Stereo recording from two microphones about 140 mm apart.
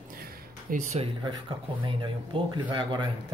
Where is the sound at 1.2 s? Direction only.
35° right (ahead or behind).